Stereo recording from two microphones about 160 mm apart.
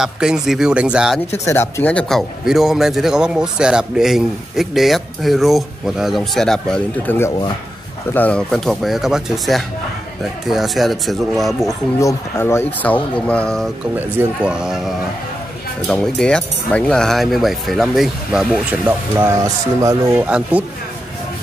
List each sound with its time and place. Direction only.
0.0 s a man's voice: 5° right (ahead or behind)
1.3 s a man's voice: 15° left (ahead or behind)
7.2 s speech: 20° left (ahead or behind)
8.1 s a man's voice: 10° left (ahead or behind)
12.0 s speech: 20° left (ahead or behind)
13.9 s a man's voice: 10° right (ahead or behind)
15.9 s a man's voice: 5° left (ahead or behind)